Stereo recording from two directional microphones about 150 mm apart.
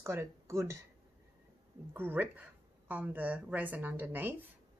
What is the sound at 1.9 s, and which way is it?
A woman's voice, 15° right (ahead or behind).